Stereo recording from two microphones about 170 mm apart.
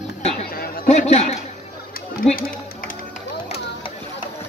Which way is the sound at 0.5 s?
60° left (ahead or behind).